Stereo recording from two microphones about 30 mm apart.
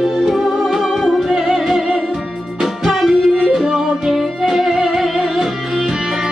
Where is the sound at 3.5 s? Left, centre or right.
Centre.